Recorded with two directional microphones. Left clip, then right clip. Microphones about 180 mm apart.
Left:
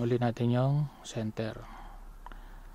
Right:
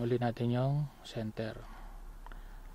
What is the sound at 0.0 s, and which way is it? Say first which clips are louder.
Speech: left 3 dB; 25° left (ahead or behind).